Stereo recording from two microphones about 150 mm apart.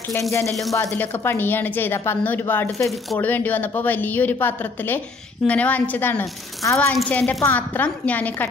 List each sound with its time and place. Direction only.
0.3 s a woman's voice: 20° left (ahead or behind)